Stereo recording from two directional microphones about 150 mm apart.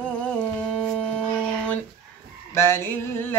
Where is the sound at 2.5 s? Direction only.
15° left (ahead or behind).